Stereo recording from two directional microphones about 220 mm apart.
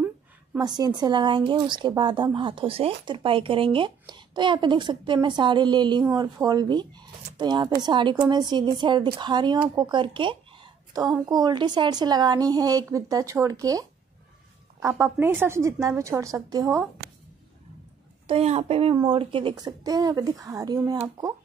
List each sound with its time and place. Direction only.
0.6 s a woman's voice: 20° right (ahead or behind)
18.2 s a woman's voice: 25° right (ahead or behind)